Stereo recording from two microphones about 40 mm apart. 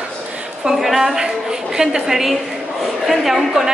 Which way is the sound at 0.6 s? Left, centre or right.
Centre.